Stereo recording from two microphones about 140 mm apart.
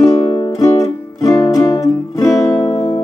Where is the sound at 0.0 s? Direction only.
30° left (ahead or behind).